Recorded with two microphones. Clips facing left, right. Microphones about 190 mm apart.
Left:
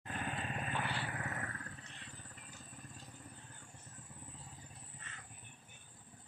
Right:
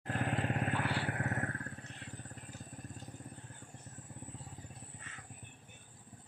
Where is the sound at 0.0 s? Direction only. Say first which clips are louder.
Right 6 dB; 70° right (ahead or behind); by 2.3 s 50° right (ahead or behind).